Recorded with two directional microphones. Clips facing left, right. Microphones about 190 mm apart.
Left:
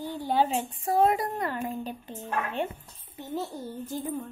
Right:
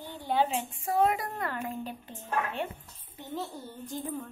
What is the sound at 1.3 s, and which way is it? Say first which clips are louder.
Speech: left 3 dB; 20° left (ahead or behind).